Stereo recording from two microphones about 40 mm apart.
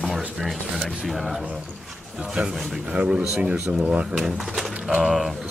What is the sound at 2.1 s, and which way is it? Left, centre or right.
A man's voice, centre.